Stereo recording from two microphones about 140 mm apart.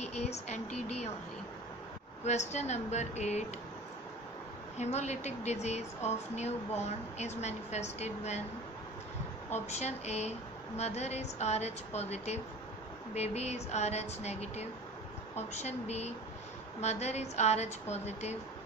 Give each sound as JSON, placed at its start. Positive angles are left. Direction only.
{"t": 0.1, "sound": "a sound", "side_deg": 50}
{"t": 2.2, "sound": "a woman's voice", "side_deg": 55}
{"t": 4.7, "sound": "a woman's voice", "side_deg": 55}
{"t": 9.7, "sound": "a woman's voice", "side_deg": 50}